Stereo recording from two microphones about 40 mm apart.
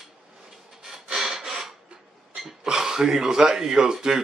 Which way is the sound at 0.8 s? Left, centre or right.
Centre.